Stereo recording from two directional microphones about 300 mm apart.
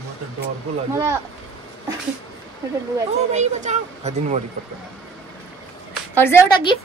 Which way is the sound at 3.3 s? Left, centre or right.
Right.